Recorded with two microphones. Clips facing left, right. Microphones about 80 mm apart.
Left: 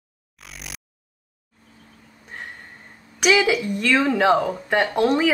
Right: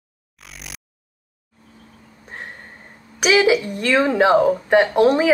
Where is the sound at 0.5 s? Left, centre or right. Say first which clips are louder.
Even; centre.